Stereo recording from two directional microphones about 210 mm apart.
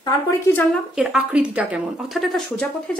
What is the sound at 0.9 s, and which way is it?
A woman's voice, 5° right (ahead or behind).